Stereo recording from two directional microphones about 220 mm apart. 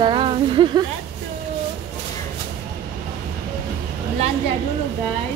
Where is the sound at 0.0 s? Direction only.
25° right (ahead or behind).